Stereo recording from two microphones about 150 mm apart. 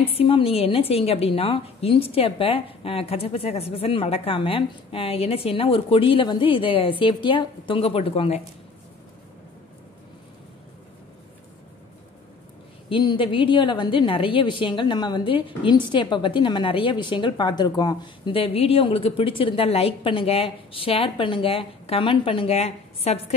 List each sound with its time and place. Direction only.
0.0 s a woman's voice: 40° left (ahead or behind)
12.9 s a woman's voice: 35° left (ahead or behind)